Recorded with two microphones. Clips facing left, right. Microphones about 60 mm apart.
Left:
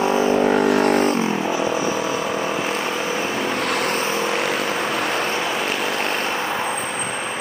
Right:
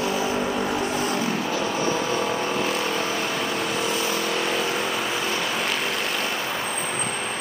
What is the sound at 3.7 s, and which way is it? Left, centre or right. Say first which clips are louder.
Vehicle: left 4 dB; left.